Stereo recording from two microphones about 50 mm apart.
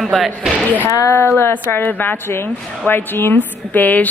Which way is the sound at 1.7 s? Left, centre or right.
Left.